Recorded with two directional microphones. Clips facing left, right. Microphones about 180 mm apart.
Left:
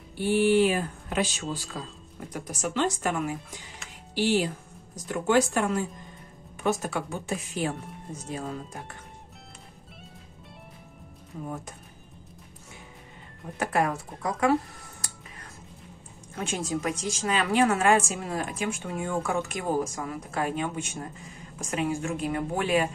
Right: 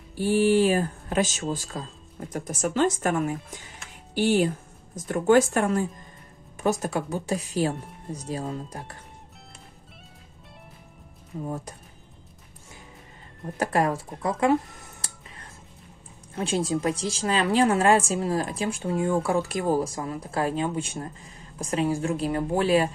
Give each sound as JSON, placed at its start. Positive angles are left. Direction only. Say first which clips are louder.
{"t": 0.1, "sound": "a woman's voice", "louder": "right 1 dB", "side_deg": -40}
{"t": 13.6, "sound": "a woman's voice", "louder": "right 2 dB", "side_deg": -35}
{"t": 16.4, "sound": "a woman's voice", "louder": "right 5 dB", "side_deg": -30}